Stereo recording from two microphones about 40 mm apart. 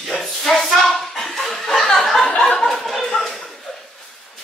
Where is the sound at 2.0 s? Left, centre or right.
Centre.